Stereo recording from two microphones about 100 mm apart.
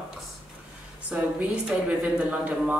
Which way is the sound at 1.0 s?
10° right (ahead or behind).